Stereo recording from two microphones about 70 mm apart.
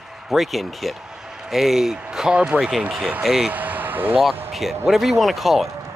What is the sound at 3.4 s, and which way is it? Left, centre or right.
Vehicle, right.